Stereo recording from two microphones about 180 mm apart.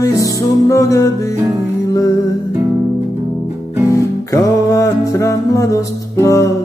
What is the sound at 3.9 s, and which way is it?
Music, 20° left (ahead or behind).